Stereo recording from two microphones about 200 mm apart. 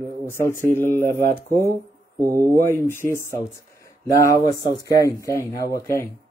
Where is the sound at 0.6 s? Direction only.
10° left (ahead or behind).